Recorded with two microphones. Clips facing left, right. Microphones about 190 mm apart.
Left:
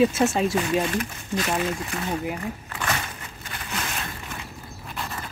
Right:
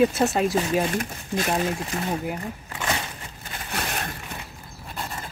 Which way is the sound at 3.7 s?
55° right (ahead or behind).